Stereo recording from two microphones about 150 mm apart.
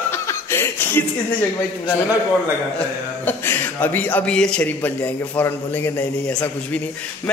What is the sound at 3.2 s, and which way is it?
A man's voice, 15° left (ahead or behind).